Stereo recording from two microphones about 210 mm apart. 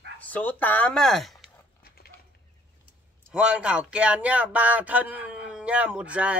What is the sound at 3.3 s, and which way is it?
Speech, 5° right (ahead or behind).